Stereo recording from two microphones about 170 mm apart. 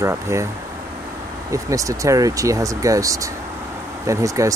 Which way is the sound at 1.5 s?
20° right (ahead or behind).